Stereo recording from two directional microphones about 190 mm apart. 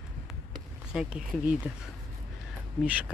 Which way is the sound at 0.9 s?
Centre (ahead or behind).